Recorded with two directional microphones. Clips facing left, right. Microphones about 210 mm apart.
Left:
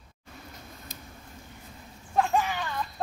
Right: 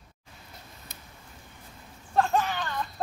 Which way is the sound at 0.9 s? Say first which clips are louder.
Left 5 dB; 60° right (ahead or behind).